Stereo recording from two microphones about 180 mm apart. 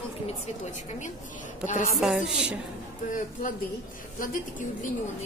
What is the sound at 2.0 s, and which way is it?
Speech, 5° right (ahead or behind).